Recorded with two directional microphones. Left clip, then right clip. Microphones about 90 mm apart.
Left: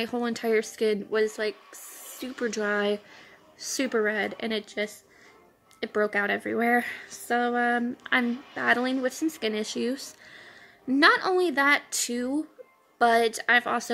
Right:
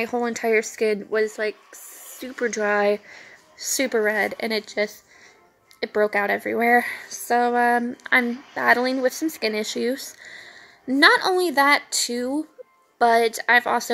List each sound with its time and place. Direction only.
0.0 s speech: 15° left (ahead or behind); by 4.9 s centre (ahead or behind)
5.8 s speech: 15° left (ahead or behind)
8.1 s a woman's voice: 15° left (ahead or behind)